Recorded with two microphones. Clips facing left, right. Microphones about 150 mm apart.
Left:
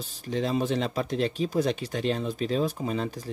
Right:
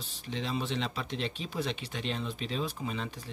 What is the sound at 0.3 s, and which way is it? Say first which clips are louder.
A man's voice: left 8 dB; 45° left (ahead or behind).